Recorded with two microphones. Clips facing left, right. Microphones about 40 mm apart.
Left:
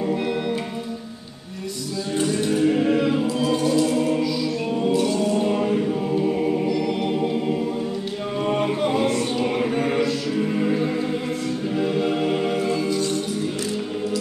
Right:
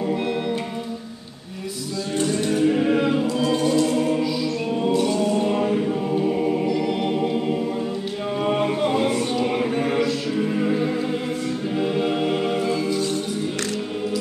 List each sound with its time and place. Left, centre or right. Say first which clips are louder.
0.0 s music: even; centre
2.3 s music: even; centre
2.8 s music: even; centre
5.4 s choir: even; centre
6.8 s music: even; centre
8.6 s music: right 1 dB; centre
9.5 s mantra: even; centre
10.6 s music: even; centre
11.7 s music: even; centre